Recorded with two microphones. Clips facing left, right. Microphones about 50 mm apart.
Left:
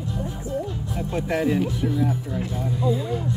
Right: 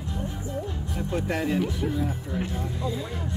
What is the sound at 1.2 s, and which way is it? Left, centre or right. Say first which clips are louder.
Speech: left 5 dB; left.